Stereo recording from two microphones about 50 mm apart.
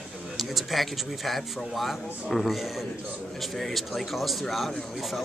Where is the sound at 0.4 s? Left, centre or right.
Centre.